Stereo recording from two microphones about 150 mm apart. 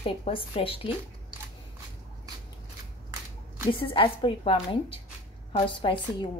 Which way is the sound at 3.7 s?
35° left (ahead or behind).